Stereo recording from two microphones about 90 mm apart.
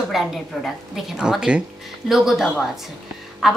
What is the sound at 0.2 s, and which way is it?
A woman's voice, centre (ahead or behind).